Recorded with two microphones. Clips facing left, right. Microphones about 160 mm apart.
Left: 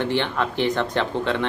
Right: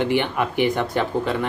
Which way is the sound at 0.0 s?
10° right (ahead or behind).